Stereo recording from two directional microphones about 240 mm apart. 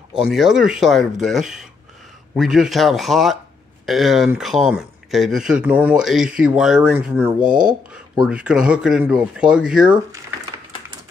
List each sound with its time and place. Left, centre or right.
0.1 s speech: centre
7.4 s speech: right
8.3 s speech: centre